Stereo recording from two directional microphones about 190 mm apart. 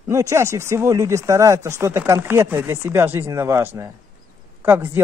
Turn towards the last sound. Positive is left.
turn(degrees=-15)  # may be behind; listen again after turning